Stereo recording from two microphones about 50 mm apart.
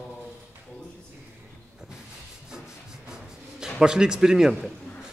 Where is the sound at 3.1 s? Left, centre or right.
Centre.